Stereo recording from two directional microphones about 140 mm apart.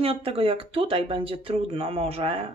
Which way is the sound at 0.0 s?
45° right (ahead or behind).